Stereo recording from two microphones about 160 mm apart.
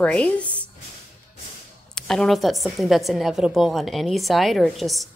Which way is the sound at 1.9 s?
5° left (ahead or behind).